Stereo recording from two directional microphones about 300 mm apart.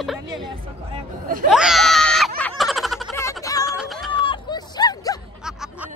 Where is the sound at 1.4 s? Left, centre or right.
Centre.